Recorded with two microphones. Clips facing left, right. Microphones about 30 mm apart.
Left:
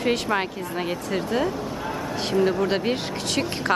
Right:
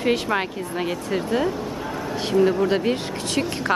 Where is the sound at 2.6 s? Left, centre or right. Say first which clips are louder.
Right 2 dB; centre.